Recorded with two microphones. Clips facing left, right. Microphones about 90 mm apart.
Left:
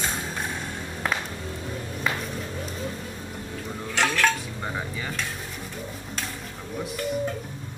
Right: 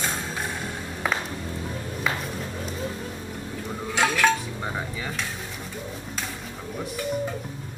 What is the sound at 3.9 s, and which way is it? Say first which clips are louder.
Dishes: right 2 dB; 15° right (ahead or behind).